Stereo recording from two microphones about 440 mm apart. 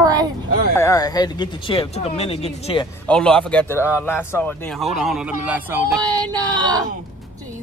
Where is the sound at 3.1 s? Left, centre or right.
Centre.